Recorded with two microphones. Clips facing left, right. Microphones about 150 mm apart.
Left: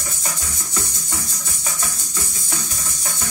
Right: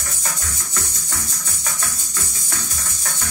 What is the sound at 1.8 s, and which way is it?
Music, 10° left (ahead or behind).